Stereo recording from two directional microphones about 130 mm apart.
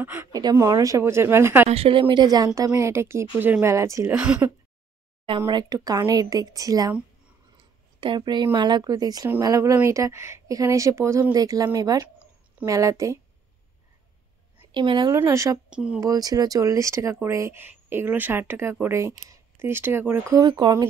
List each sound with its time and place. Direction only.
0.0 s speech: 20° right (ahead or behind)
0.4 s speech: 30° right (ahead or behind)
1.7 s speech: 45° right (ahead or behind); by 4.1 s 25° right (ahead or behind)
4.1 s speech: 10° right (ahead or behind)
5.5 s speech: 30° right (ahead or behind)
7.5 s a sound: 40° right (ahead or behind)
8.5 s speech: 35° right (ahead or behind)
14.7 s speech: 35° right (ahead or behind)
15.1 s speech: 25° right (ahead or behind)
15.7 s speech: 10° right (ahead or behind)
16.0 s speech: 30° right (ahead or behind)
20.4 s speech: 35° right (ahead or behind)